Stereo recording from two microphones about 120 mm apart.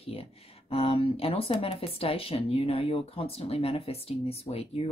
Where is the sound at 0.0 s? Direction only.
55° left (ahead or behind).